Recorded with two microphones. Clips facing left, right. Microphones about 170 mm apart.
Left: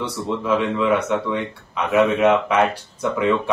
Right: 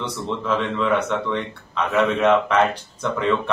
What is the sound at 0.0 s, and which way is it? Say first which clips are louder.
Speech: left 2 dB; 10° left (ahead or behind).